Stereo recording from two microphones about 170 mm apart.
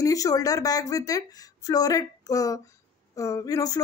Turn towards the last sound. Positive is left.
turn(degrees=20)  # may be behind; listen again after turning